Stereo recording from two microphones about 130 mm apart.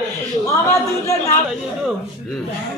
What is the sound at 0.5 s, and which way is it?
Speech, 20° left (ahead or behind).